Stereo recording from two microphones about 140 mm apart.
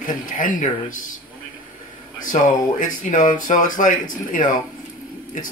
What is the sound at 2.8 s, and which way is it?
Speech, 65° left (ahead or behind).